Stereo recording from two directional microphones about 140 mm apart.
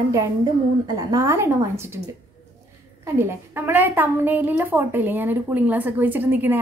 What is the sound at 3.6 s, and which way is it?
A woman's voice, 15° right (ahead or behind).